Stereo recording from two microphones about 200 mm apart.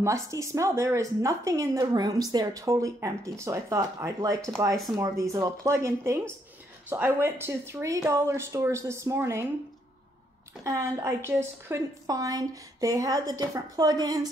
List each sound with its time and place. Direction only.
0.0 s a woman's voice: 15° right (ahead or behind)
10.6 s a woman's voice: 15° right (ahead or behind)